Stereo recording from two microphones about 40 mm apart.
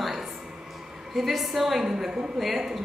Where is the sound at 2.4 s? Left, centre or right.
Centre.